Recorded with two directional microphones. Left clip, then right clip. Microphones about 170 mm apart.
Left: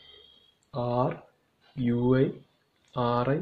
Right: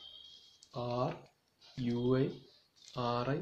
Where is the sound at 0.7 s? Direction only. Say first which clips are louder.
Left 8 dB; 25° left (ahead or behind).